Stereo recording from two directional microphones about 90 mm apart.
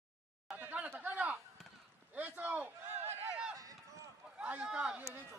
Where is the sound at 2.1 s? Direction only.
20° right (ahead or behind).